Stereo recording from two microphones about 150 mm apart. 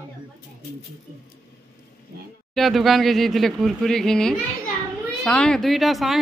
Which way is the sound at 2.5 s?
Centre (ahead or behind).